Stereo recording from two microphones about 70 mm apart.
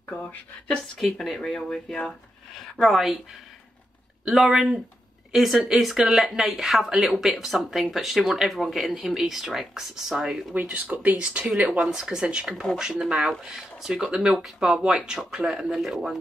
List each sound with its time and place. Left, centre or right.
0.9 s speech: centre
4.2 s speech: centre
10.5 s speech: right; by 16.2 s centre